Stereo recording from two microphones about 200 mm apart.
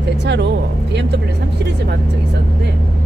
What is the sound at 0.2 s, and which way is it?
Vehicle, 60° right (ahead or behind).